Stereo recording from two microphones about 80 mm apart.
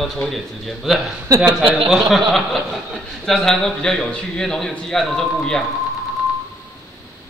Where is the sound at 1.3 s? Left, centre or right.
Right.